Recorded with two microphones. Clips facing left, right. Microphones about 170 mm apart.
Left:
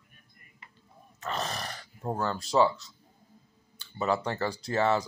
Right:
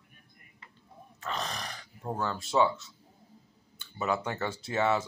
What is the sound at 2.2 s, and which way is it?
Speech, centre (ahead or behind).